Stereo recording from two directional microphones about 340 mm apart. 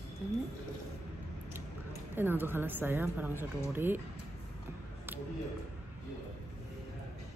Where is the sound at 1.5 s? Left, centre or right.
Centre.